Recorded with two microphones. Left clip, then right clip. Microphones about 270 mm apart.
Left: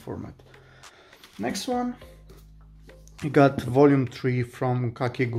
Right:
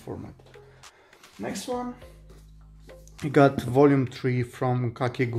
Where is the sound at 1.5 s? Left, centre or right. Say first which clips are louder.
Left 3 dB; left.